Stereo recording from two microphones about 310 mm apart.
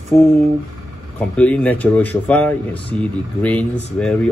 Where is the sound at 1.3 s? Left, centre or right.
Centre.